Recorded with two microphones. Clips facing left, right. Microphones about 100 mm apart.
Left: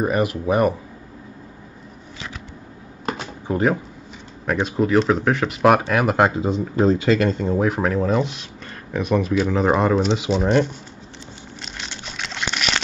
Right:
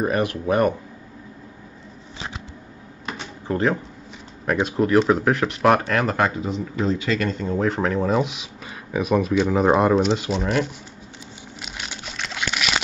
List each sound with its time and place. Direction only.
0.0 s speech: 5° left (ahead or behind)
3.4 s speech: 10° left (ahead or behind)
4.5 s speech: centre (ahead or behind)
6.1 s speech: 20° left (ahead or behind)
6.6 s speech: 35° left (ahead or behind)
7.2 s speech: 25° left (ahead or behind)
7.5 s speech: 10° left (ahead or behind)
11.6 s a sound: 5° right (ahead or behind)